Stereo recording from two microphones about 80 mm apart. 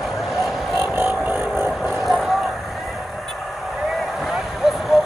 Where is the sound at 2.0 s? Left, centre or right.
Centre.